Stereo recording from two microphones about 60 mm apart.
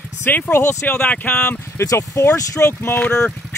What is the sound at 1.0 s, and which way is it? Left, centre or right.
Speech, left.